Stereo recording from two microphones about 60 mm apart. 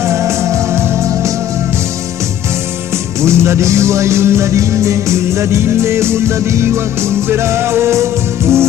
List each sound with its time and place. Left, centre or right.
0.0 s music: right
3.2 s music: right